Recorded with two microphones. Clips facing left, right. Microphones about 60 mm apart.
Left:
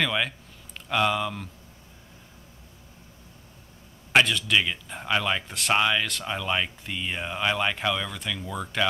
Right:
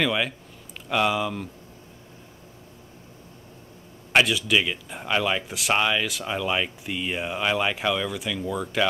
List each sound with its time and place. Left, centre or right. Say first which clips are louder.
0.0 s speech: right 2 dB; centre
4.1 s speech: right 1 dB; centre